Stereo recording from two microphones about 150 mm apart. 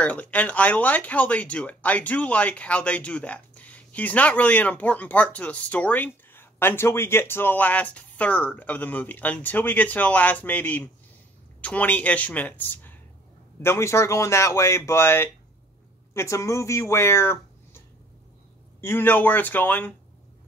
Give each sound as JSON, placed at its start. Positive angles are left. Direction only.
{"t": 0.0, "sound": "speech", "side_deg": 10}